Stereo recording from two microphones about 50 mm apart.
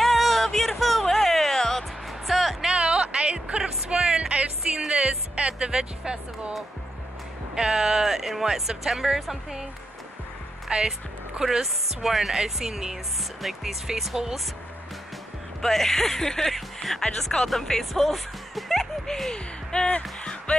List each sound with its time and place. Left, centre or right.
0.0 s music: centre
2.6 s music: centre
4.4 s speech: centre
7.5 s speech: centre
10.7 s speech: centre
11.4 s speech: centre
15.6 s speech: centre
20.0 s music: centre